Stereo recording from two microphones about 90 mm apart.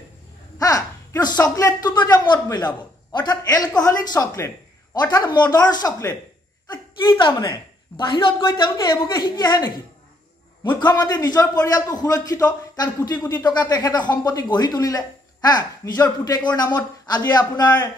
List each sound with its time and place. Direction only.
0.6 s a man's voice: 45° left (ahead or behind)
5.1 s speech: 55° left (ahead or behind)
6.7 s a woman's voice: 60° left (ahead or behind)
8.9 s speech: 30° left (ahead or behind)
9.2 s speech: 50° left (ahead or behind)
10.6 s speech: 55° left (ahead or behind)